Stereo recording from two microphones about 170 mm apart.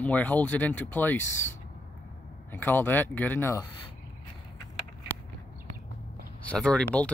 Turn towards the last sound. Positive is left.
turn(degrees=5)  # may be behind; listen again after turning